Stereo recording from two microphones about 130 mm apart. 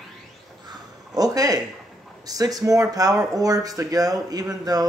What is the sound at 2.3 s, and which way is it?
Speech, 30° right (ahead or behind).